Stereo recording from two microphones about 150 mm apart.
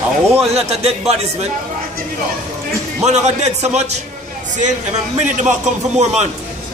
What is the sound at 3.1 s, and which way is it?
Speech, 50° right (ahead or behind).